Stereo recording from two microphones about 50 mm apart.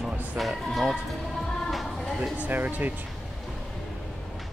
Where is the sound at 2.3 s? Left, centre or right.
Right.